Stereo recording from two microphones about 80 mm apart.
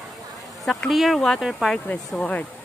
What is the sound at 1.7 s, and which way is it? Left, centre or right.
Speech, centre.